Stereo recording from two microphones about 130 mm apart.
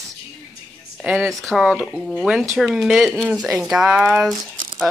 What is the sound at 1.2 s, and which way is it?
Speech, centre (ahead or behind).